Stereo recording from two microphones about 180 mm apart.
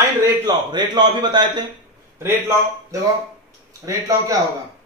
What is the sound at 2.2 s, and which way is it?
Speech, 15° right (ahead or behind).